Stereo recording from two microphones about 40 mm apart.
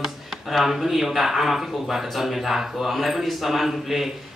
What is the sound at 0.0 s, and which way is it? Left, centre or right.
Speech, centre.